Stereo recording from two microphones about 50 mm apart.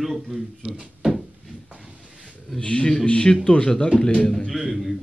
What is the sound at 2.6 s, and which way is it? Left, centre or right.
A man's voice, centre.